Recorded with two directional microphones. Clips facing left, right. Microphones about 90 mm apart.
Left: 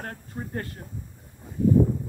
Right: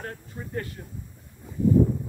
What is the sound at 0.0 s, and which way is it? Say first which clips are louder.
Speech: left 1 dB; 45° left (ahead or behind).